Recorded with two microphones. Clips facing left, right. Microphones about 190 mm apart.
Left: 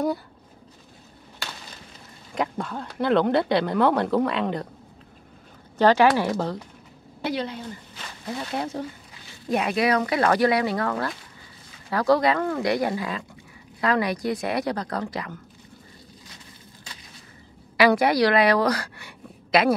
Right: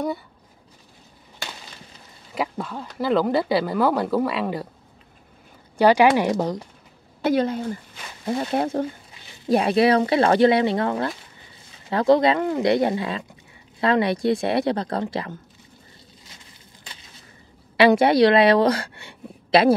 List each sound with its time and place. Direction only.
2.3 s speech: 5° right (ahead or behind)
5.8 s speech: 10° right (ahead or behind)
7.2 s speech: 45° right (ahead or behind)
9.5 s speech: 30° right (ahead or behind)
17.7 s a woman's voice: 25° right (ahead or behind)